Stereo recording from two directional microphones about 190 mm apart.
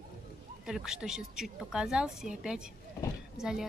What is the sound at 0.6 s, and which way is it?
Speech, 5° right (ahead or behind).